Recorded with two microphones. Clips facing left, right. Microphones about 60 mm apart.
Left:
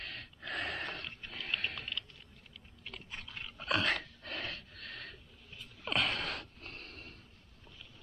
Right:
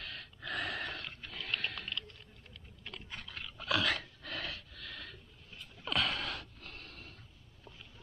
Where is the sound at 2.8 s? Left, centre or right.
Centre.